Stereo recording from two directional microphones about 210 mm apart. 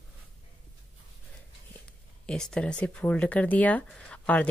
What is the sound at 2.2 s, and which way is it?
A woman's voice, 5° left (ahead or behind).